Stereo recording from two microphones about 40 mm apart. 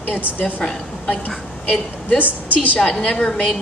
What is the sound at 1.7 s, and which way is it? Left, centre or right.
Speech, left.